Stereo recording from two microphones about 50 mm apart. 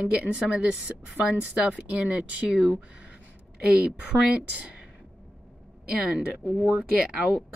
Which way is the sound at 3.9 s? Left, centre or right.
Centre.